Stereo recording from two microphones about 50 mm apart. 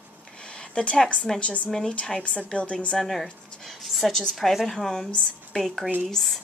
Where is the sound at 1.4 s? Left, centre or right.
Left.